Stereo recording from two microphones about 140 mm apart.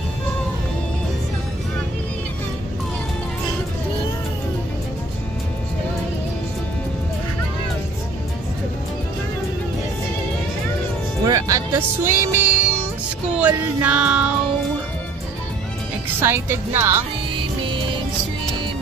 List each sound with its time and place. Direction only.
11.2 s music: 25° right (ahead or behind); by 14.3 s 10° right (ahead or behind)
16.2 s speech: 20° right (ahead or behind)